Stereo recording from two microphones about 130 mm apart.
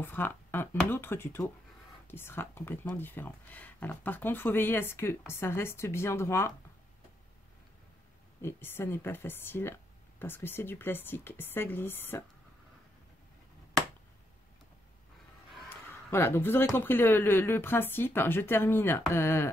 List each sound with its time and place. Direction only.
0.0 s speech: 15° left (ahead or behind)
8.4 s speech: 20° left (ahead or behind)
15.7 s speech: 20° left (ahead or behind)